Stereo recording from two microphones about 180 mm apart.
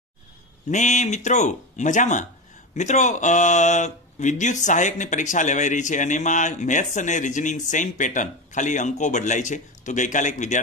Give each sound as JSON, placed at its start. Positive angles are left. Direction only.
{"t": 0.7, "sound": "speech", "side_deg": 40}